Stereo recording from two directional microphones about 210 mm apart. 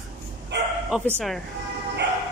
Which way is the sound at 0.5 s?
55° right (ahead or behind).